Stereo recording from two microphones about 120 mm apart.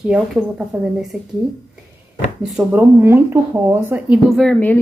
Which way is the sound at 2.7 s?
15° right (ahead or behind).